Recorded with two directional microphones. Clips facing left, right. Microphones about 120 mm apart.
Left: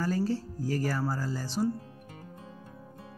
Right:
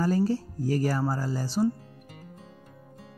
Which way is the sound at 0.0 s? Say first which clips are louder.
Right 4 dB; 40° right (ahead or behind).